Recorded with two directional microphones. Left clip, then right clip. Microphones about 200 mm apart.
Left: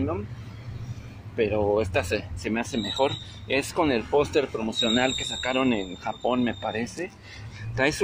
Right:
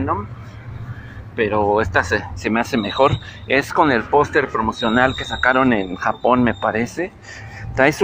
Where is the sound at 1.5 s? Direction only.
Centre (ahead or behind).